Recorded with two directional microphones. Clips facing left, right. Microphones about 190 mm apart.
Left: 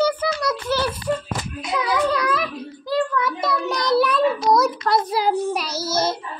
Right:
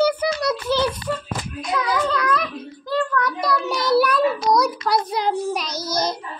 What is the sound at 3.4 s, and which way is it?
A child's voice, 5° right (ahead or behind).